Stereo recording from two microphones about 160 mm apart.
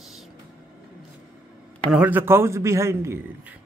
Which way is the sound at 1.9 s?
10° right (ahead or behind).